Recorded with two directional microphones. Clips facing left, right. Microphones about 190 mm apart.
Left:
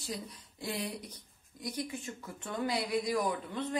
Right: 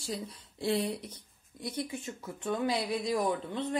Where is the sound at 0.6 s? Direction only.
25° right (ahead or behind).